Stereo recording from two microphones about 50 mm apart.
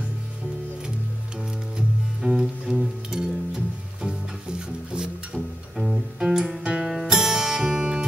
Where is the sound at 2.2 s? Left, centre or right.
Centre.